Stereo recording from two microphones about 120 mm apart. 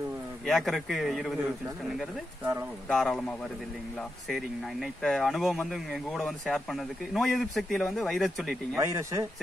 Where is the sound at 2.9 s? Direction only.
5° left (ahead or behind).